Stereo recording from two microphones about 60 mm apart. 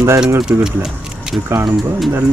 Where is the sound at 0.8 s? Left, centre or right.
Centre.